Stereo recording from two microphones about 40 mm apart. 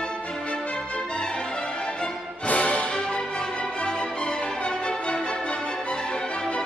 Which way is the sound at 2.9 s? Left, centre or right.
Left.